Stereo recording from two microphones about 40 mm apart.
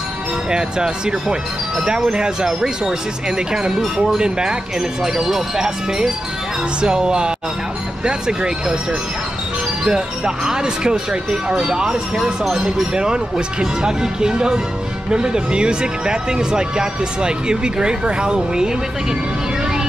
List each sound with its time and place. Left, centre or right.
0.5 s speech: centre
9.8 s speech: centre